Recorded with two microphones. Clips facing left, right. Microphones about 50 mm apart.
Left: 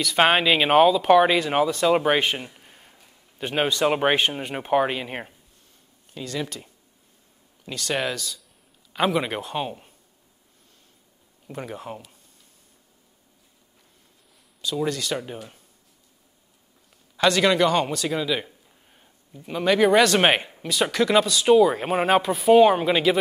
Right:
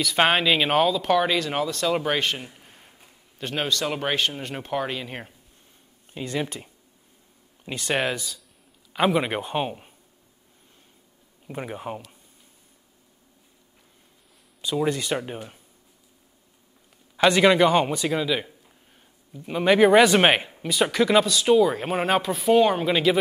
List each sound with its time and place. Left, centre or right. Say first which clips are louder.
0.0 s speech: left 1 dB; centre
2.5 s a sound: even; centre
3.3 s speech: left 3 dB; centre
6.1 s speech: right 2 dB; right
8.9 s speech: right 1 dB; centre
11.4 s speech: right 1 dB; centre
14.6 s speech: right 1 dB; right
17.2 s speech: right 2 dB; centre
19.4 s speech: right 2 dB; centre
20.2 s speech: even; centre